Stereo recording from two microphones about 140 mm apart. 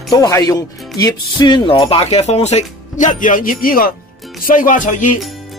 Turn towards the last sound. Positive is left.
turn(degrees=65)  # may be behind; listen again after turning